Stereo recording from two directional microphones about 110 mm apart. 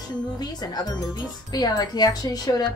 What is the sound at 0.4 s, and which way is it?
Speech, 40° left (ahead or behind).